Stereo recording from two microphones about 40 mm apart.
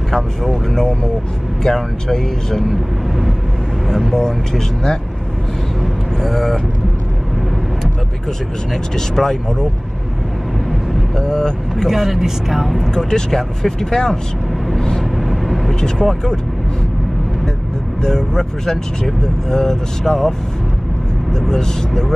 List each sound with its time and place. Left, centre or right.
1.6 s speech: centre
2.7 s speech: centre
3.8 s speech: centre
6.2 s speech: centre
8.9 s speech: centre
11.1 s vehicle: centre
11.7 s speech: centre
12.7 s speech: centre
14.8 s vehicle: centre
15.1 s vehicle: centre
15.8 s speech: centre
18.0 s speech: centre